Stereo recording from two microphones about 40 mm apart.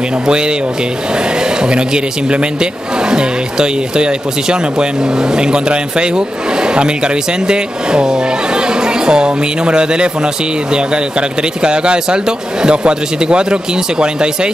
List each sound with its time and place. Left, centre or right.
0.3 s speech: right